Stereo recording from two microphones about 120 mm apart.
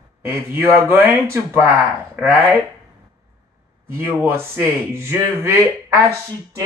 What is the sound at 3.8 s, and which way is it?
Speech, 20° right (ahead or behind).